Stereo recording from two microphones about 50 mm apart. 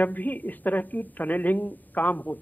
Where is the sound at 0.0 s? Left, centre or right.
Left.